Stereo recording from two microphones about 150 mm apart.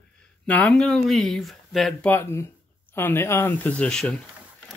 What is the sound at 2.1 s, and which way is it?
Speech, 15° left (ahead or behind).